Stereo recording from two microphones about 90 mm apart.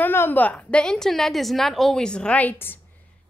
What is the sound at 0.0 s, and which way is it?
A woman's voice, 25° left (ahead or behind).